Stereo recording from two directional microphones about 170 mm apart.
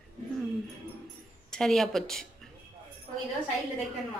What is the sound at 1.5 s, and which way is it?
Speech, centre (ahead or behind).